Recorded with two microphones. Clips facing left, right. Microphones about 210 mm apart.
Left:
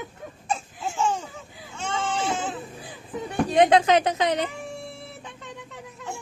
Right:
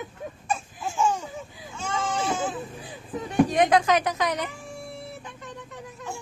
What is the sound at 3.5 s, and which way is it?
Speech, 25° left (ahead or behind).